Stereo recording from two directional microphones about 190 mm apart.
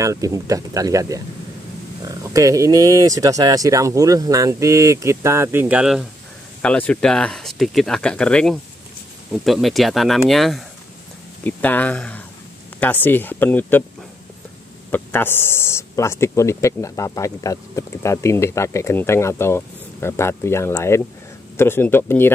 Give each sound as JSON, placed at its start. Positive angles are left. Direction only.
{"t": 0.0, "sound": "speech", "side_deg": -15}
{"t": 6.6, "sound": "speech", "side_deg": 5}
{"t": 14.9, "sound": "speech", "side_deg": 10}